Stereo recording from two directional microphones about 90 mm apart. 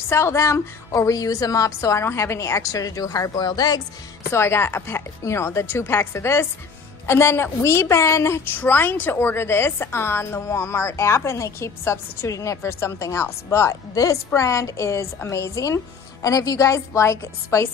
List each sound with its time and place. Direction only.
0.1 s a woman's voice: 30° left (ahead or behind); by 3.8 s 50° left (ahead or behind)
4.3 s a woman's voice: 30° left (ahead or behind)